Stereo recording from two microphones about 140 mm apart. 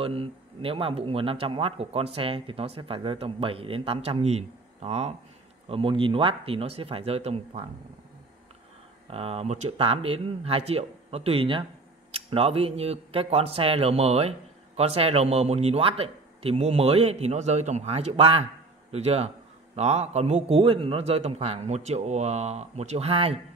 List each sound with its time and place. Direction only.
0.0 s speech: 40° right (ahead or behind)
9.0 s speech: 45° right (ahead or behind)